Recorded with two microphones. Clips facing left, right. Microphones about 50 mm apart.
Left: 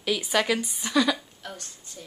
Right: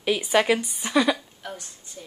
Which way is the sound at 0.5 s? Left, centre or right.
Centre.